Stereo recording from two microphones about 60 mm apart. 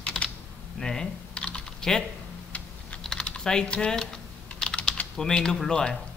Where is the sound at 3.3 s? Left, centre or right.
Centre.